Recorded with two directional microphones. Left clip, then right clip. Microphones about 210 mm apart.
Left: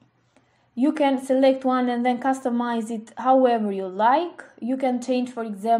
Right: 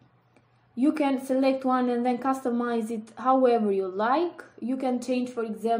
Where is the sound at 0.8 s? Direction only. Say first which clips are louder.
Left 4 dB; 15° left (ahead or behind).